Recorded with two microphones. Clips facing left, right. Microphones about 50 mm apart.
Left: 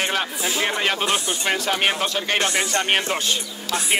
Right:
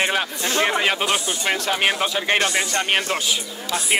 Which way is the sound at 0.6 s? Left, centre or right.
Centre.